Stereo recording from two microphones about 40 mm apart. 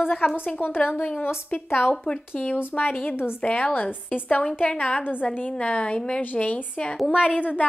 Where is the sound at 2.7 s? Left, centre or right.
Left.